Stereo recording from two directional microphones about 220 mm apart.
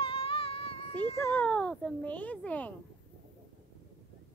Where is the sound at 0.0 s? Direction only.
25° left (ahead or behind).